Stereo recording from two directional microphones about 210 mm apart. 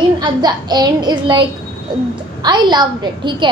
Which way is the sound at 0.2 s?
20° right (ahead or behind).